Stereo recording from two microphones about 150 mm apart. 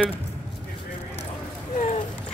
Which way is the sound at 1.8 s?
55° left (ahead or behind).